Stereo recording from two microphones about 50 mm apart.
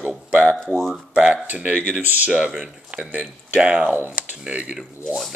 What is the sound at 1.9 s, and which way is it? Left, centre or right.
Speech, right.